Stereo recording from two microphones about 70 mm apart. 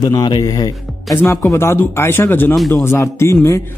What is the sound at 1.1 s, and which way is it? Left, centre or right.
Speech, left.